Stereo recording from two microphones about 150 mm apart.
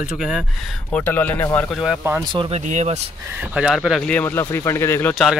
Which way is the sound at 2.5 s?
50° right (ahead or behind).